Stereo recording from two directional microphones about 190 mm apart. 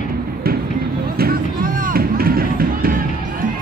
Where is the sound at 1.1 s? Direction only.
50° right (ahead or behind).